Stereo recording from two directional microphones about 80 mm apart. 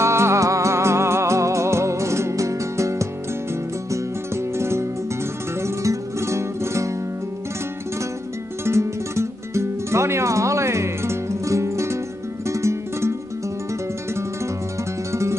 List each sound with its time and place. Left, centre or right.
0.0 s music: right
8.6 s music: right